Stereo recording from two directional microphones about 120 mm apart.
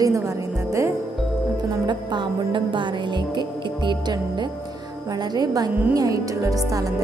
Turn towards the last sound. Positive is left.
turn(degrees=-30)  # may be behind; listen again after turning